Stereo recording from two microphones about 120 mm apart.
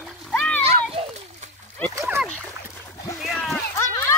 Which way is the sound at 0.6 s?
55° right (ahead or behind).